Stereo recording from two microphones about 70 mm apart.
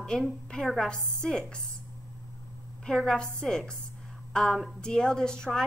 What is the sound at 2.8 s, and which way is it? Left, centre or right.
Speech, centre.